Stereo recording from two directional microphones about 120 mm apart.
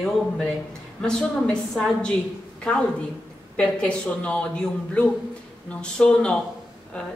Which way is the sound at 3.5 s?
10° left (ahead or behind).